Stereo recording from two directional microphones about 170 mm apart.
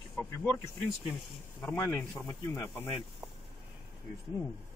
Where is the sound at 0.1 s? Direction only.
10° left (ahead or behind).